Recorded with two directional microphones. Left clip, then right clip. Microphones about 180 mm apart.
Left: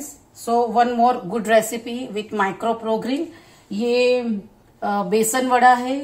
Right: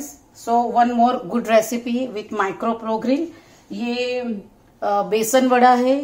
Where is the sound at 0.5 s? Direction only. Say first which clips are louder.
Right 1 dB; 30° right (ahead or behind).